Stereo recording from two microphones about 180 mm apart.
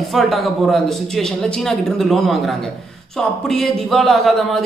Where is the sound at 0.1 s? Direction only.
Centre (ahead or behind).